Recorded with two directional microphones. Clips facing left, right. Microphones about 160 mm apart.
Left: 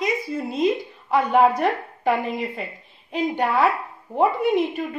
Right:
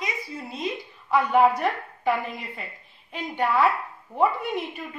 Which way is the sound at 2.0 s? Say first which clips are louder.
Left 3 dB; 40° left (ahead or behind).